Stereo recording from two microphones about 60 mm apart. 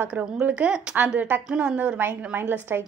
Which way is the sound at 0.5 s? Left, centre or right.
Centre.